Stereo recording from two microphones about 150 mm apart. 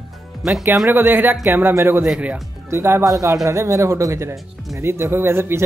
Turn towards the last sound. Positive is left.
turn(degrees=-15)  # may be behind; listen again after turning